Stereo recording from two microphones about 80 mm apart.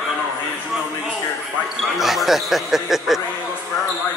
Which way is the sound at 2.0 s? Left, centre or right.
Centre.